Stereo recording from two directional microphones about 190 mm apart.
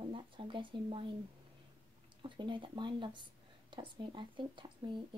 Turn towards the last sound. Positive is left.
turn(degrees=-25)  # may be behind; listen again after turning